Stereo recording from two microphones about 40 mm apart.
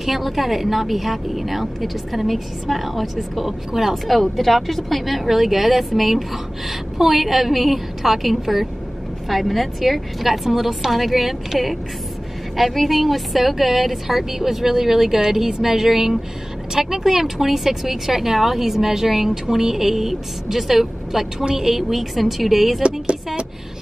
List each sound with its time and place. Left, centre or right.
0.0 s a woman's voice: centre
22.8 s speech: right